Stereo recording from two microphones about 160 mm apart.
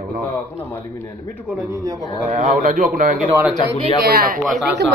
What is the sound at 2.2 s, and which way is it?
Speech, 50° right (ahead or behind).